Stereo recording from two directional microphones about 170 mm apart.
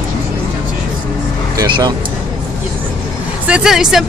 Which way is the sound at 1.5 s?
25° right (ahead or behind).